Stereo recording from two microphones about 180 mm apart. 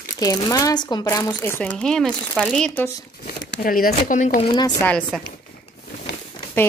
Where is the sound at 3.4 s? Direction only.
60° left (ahead or behind).